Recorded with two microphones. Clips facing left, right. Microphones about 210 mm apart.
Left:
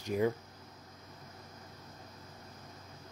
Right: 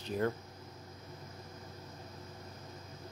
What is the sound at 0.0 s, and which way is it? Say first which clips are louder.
Speech: left 3 dB; 10° left (ahead or behind).